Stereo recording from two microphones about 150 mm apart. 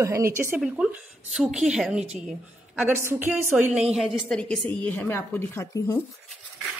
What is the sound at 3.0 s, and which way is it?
A woman's voice, 15° right (ahead or behind).